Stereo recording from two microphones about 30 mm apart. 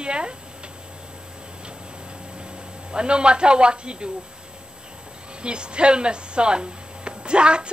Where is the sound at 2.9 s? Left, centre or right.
Right.